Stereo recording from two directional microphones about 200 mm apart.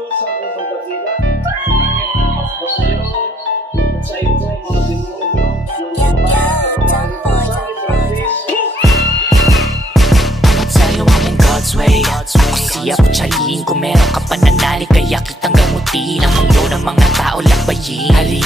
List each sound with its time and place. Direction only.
8.8 s music: centre (ahead or behind)